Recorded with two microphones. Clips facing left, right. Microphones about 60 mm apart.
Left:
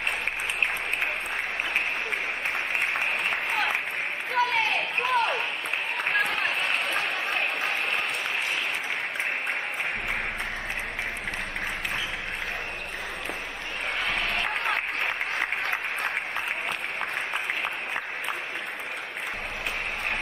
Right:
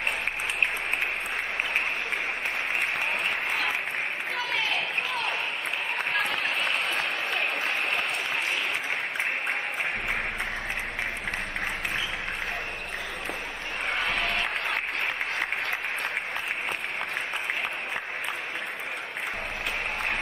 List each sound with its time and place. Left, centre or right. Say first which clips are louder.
3.3 s applause: left 1 dB; left
4.4 s basketball bounce: left 6 dB; left
6.1 s run: left 3 dB; left
13.9 s a sound: even; right